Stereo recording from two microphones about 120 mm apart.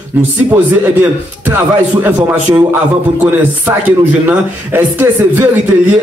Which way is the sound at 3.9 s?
15° right (ahead or behind).